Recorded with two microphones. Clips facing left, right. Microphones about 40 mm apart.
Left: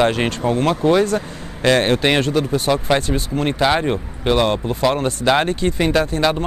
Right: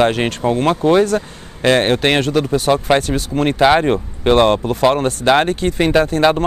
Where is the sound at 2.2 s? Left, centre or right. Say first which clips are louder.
Right 2 dB; right.